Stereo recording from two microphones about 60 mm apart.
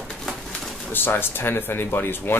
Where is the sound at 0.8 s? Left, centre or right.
Left.